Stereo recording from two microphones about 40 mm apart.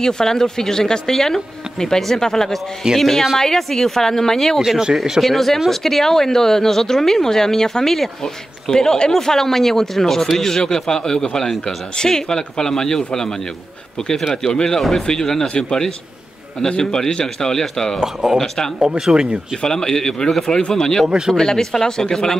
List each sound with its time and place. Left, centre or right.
0.0 s speech: centre
4.6 s speech: centre
5.2 s speech: centre
14.3 s speech: centre
14.8 s speech: centre; by 15.8 s left
16.8 s speech: centre
18.0 s speech: centre
19.6 s speech: centre